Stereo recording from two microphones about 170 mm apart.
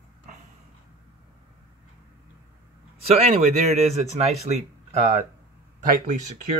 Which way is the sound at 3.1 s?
40° right (ahead or behind).